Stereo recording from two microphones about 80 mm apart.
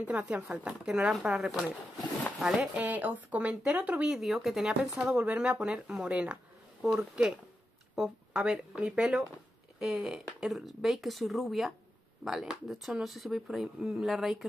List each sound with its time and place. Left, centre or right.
0.0 s speech: centre
2.9 s speech: right
4.1 s speech: centre